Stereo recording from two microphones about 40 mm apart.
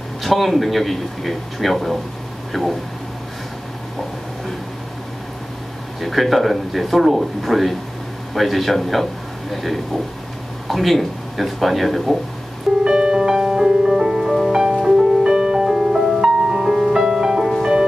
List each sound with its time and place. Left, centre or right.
0.2 s a man's voice: centre
5.9 s a man's voice: centre
12.8 s music: centre